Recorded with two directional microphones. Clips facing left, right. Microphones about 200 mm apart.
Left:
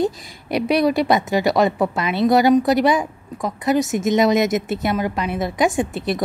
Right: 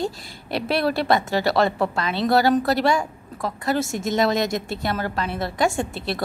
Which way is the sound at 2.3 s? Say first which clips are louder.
Left 4 dB; 20° left (ahead or behind).